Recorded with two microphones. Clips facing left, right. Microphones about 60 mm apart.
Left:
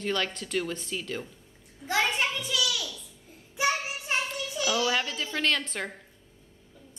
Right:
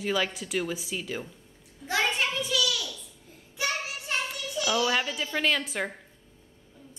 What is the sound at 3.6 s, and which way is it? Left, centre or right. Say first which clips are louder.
Child singing: left 3 dB; centre.